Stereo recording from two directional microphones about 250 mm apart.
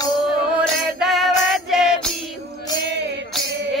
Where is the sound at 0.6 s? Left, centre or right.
Centre.